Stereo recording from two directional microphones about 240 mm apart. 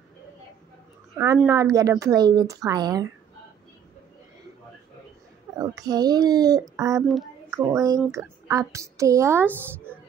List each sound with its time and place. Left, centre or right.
1.1 s speech: centre
5.6 s speech: centre